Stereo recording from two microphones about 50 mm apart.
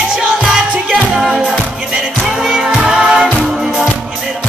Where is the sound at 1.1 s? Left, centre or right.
Centre.